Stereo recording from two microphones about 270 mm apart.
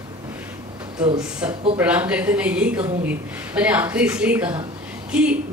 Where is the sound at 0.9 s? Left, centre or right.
Centre.